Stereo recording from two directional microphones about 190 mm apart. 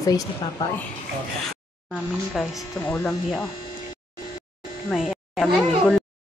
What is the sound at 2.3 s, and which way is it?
Speech, centre (ahead or behind).